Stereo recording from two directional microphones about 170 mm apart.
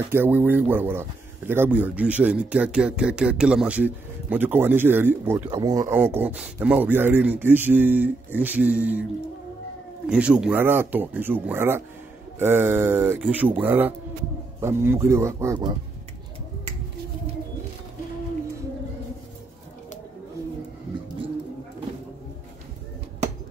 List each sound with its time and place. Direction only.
0.1 s speech: 15° right (ahead or behind)
5.5 s speech: 20° right (ahead or behind)
10.0 s speech: 5° right (ahead or behind)